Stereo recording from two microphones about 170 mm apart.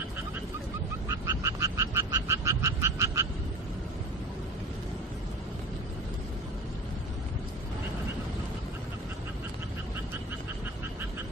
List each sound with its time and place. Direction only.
1.0 s frog: 15° right (ahead or behind)